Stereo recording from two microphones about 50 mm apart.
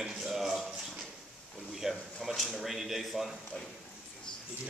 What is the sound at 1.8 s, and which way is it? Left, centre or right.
A man's voice, centre.